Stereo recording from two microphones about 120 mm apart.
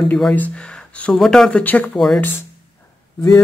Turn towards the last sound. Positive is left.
turn(degrees=25)  # may be behind; listen again after turning